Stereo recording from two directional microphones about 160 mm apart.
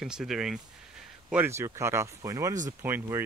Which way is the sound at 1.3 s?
15° right (ahead or behind).